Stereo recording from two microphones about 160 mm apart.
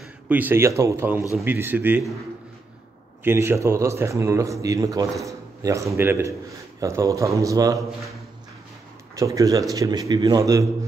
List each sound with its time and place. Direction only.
0.3 s speech: 10° right (ahead or behind)
3.3 s speech: 15° right (ahead or behind)
9.1 s speech: 20° right (ahead or behind)